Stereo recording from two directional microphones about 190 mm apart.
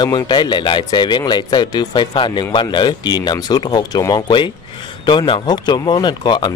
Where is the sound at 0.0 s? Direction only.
25° left (ahead or behind).